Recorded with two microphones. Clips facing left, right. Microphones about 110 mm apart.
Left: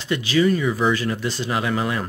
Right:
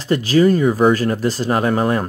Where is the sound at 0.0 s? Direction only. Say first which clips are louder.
Right 5 dB; 40° right (ahead or behind).